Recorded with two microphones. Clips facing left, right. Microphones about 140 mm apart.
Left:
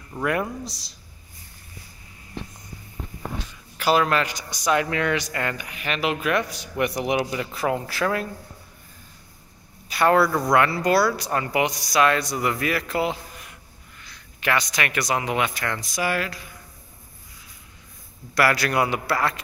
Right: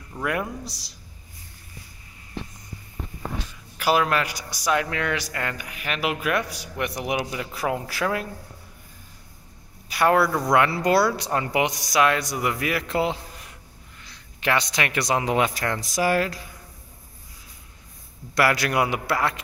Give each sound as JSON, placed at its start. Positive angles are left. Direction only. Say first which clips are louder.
{"t": 0.2, "sound": "a man's voice", "louder": "left 2 dB", "side_deg": -5}
{"t": 3.7, "sound": "speech", "louder": "left 1 dB", "side_deg": -10}
{"t": 9.8, "sound": "speech", "louder": "left 1 dB", "side_deg": -10}
{"t": 18.3, "sound": "a man's voice", "louder": "even", "side_deg": -20}